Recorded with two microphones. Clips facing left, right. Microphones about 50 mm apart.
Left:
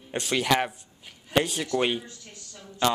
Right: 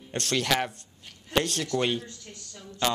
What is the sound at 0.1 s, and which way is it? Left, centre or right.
A man's voice, centre.